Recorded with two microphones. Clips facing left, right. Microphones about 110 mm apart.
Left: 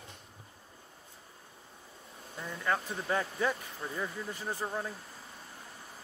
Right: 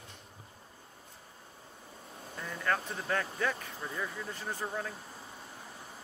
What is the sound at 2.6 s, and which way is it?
Speech, 10° left (ahead or behind).